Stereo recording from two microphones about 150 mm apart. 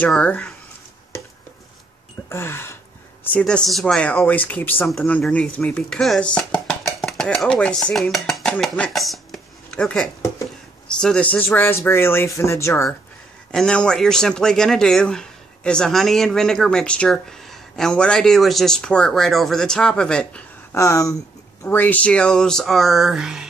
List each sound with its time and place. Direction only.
0.0 s speech: 10° left (ahead or behind)
2.2 s a sound: 15° left (ahead or behind)
3.3 s speech: 5° left (ahead or behind)
13.5 s speech: 5° left (ahead or behind)
20.7 s speech: 20° left (ahead or behind); by 23.4 s 5° right (ahead or behind)